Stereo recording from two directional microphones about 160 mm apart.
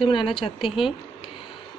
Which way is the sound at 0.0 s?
30° left (ahead or behind).